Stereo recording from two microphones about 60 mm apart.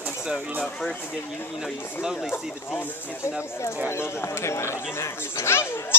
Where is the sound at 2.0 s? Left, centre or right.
Centre.